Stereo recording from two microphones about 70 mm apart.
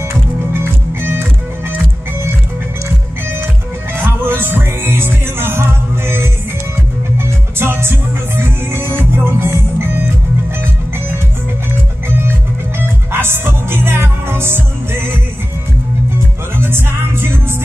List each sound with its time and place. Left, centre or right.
0.5 s music: right
3.9 s music: right
12.7 s music: right
16.5 s music: right